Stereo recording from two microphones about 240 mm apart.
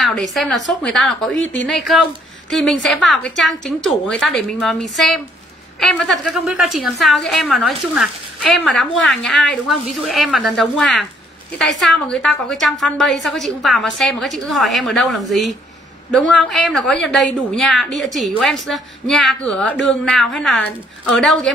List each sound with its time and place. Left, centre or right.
0.0 s a woman's voice: centre
1.3 s speech: left
1.7 s a woman's voice: centre